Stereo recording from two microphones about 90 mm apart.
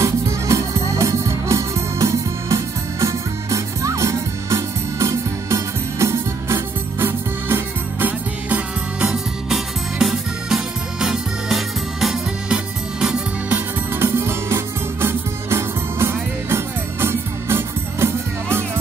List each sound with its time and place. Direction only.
0.0 s music: 35° right (ahead or behind); by 9.1 s 15° right (ahead or behind)
9.1 s music: 5° right (ahead or behind)
13.5 s music: 25° right (ahead or behind)